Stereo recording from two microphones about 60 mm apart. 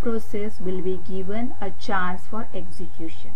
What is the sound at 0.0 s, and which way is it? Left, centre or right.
Speech, centre.